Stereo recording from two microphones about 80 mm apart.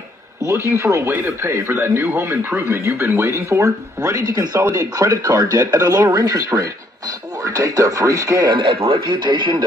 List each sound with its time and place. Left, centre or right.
0.4 s speech: right
8.5 s speech: right